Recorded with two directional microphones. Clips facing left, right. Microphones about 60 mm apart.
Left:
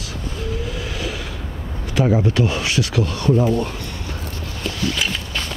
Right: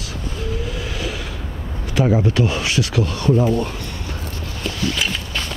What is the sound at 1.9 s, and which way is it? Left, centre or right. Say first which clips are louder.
Speech: even; right.